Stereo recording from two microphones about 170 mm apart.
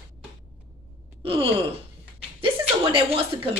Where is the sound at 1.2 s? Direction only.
30° right (ahead or behind).